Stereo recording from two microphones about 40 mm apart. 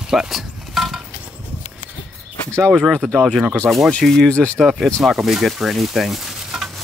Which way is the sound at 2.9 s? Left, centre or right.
Left.